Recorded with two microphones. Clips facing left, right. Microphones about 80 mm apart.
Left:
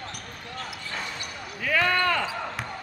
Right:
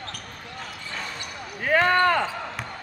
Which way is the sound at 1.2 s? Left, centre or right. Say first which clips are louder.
Right 2 dB; right.